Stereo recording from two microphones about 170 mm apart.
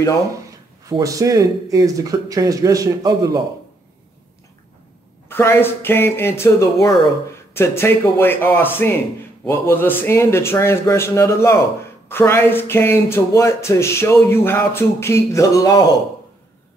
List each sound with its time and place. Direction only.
0.8 s speech: 20° right (ahead or behind)
5.3 s speech: 15° left (ahead or behind)